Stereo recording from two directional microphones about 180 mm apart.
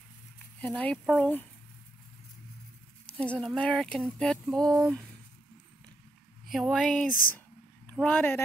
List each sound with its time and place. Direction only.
0.6 s speech: 5° left (ahead or behind)
3.1 s speech: 5° left (ahead or behind)
6.5 s speech: centre (ahead or behind)
7.1 s speech: 50° left (ahead or behind)
7.9 s speech: 5° left (ahead or behind)